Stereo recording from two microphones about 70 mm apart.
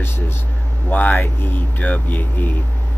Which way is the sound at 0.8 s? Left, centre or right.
Left.